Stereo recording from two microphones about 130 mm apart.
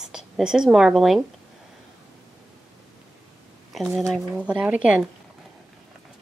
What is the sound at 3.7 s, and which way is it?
Speech, centre (ahead or behind).